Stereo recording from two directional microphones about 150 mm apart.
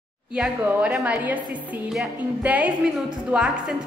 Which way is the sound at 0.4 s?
10° right (ahead or behind).